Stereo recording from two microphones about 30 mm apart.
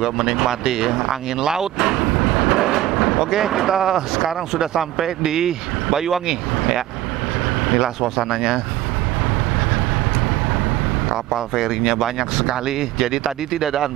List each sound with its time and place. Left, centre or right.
0.0 s speech: centre
11.3 s speech: centre